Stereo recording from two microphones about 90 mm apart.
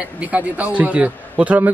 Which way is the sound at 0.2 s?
15° right (ahead or behind).